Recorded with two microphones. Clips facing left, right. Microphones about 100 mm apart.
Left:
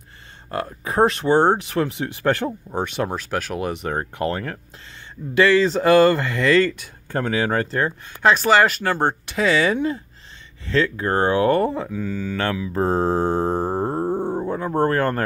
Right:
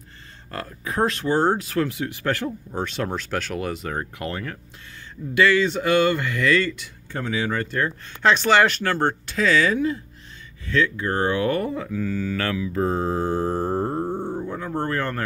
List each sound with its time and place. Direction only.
0.5 s speech: 25° left (ahead or behind)
2.8 s speech: 15° left (ahead or behind)
3.9 s speech: 35° left (ahead or behind)
6.7 s speech: 45° left (ahead or behind)
7.6 s speech: 30° left (ahead or behind)
8.5 s speech: 5° left (ahead or behind); by 11.9 s 30° left (ahead or behind)
11.9 s speech: 15° left (ahead or behind)
12.7 s mantra: 35° left (ahead or behind)
13.9 s a sound: 40° left (ahead or behind)